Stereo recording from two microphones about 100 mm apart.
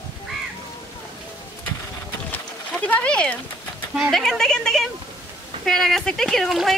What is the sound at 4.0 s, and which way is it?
Speech, centre (ahead or behind).